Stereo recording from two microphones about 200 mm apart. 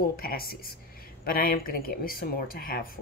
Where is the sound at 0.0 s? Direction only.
50° left (ahead or behind).